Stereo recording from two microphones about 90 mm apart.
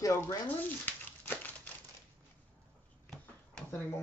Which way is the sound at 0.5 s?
20° left (ahead or behind).